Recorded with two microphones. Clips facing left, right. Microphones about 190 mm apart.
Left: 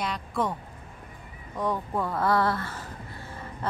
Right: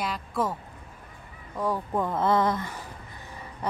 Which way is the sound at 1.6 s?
10° right (ahead or behind).